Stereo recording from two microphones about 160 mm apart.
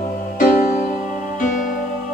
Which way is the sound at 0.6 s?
55° left (ahead or behind).